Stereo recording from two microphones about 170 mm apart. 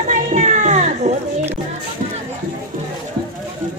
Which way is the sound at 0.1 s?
45° right (ahead or behind).